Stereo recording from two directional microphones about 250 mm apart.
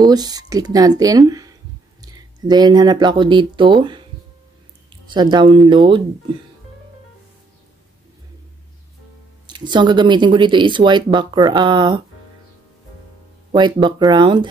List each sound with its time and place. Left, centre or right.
0.0 s speech: centre
9.5 s speech: centre
13.5 s speech: centre